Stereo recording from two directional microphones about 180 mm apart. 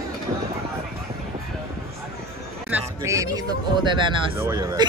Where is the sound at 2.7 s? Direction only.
15° right (ahead or behind).